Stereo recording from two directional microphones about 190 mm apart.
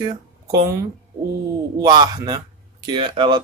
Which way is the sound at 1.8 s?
20° right (ahead or behind).